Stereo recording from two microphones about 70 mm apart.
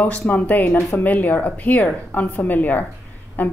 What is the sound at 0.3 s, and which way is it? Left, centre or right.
Speech, left.